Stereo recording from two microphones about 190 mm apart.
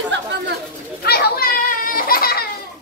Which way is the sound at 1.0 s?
55° left (ahead or behind).